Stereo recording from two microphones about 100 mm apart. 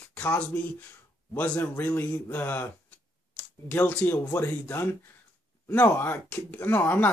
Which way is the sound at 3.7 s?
15° left (ahead or behind).